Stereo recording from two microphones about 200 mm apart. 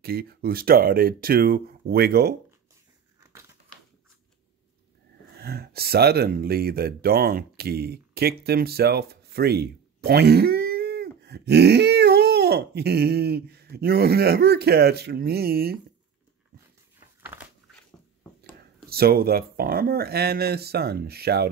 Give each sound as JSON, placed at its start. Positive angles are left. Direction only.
{"t": 0.0, "sound": "speech", "side_deg": -50}
{"t": 3.2, "sound": "crumpling", "side_deg": -15}
{"t": 5.4, "sound": "speech", "side_deg": -50}
{"t": 17.2, "sound": "dog", "side_deg": -10}
{"t": 18.9, "sound": "speech", "side_deg": -50}